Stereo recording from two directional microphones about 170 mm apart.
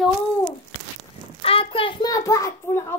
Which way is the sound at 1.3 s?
35° left (ahead or behind).